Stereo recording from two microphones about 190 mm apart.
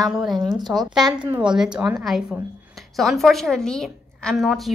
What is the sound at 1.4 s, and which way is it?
A woman's voice, 5° right (ahead or behind).